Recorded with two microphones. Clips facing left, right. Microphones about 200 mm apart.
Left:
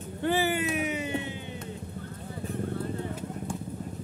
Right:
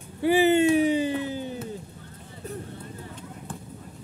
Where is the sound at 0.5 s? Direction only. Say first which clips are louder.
Right 10 dB; 30° right (ahead or behind).